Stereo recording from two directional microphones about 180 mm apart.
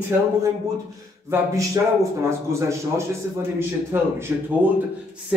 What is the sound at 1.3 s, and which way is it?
A man's voice, 15° right (ahead or behind).